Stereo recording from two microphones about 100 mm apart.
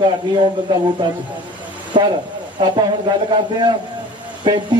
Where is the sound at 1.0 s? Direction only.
45° right (ahead or behind).